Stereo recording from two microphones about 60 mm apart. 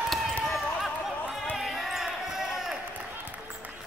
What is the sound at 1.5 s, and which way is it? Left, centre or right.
Crowd, centre.